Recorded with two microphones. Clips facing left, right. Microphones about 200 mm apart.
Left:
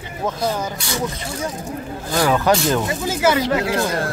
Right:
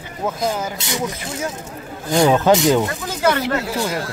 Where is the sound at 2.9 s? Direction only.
5° left (ahead or behind).